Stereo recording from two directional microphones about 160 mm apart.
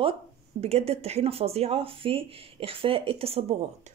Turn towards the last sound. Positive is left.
turn(degrees=-40)  # may be behind; listen again after turning